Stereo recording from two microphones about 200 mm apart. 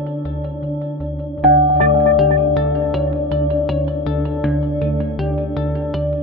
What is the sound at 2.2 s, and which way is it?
Music, centre (ahead or behind).